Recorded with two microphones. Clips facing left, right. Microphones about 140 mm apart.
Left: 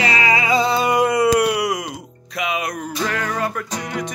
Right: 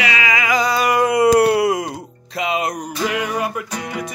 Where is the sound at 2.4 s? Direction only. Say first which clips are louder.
Right 3 dB; 30° right (ahead or behind).